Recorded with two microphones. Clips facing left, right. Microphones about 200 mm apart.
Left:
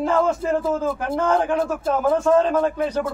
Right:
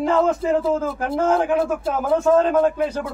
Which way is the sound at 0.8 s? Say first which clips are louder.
Right 1 dB; 5° right (ahead or behind).